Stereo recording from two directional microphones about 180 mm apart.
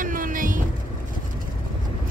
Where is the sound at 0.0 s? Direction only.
50° right (ahead or behind).